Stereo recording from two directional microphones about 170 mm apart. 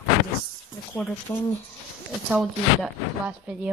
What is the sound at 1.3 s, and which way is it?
Speech, 15° left (ahead or behind).